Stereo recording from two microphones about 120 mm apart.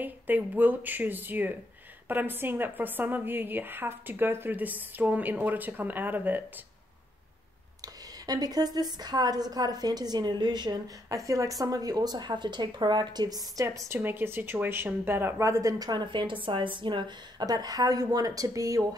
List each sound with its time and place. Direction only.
0.0 s a woman's voice: 15° right (ahead or behind)
7.8 s a woman's voice: 30° right (ahead or behind)